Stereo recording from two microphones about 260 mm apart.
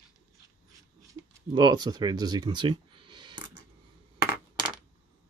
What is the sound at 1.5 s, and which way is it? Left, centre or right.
Speech, centre.